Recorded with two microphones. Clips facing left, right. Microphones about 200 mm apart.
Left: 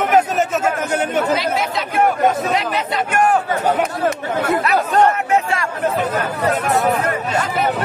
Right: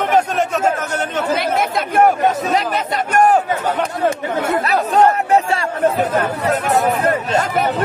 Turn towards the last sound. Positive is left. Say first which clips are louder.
# right 3 dB
turn(degrees=-35)  # may be behind; listen again after turning